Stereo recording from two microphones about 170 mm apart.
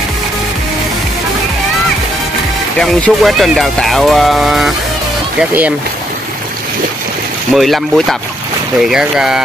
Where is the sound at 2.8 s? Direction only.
Centre (ahead or behind).